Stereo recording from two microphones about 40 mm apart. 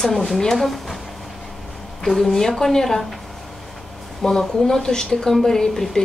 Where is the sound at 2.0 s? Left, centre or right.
Centre.